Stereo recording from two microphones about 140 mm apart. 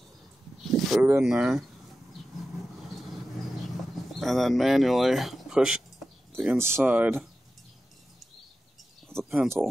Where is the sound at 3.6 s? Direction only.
Centre (ahead or behind).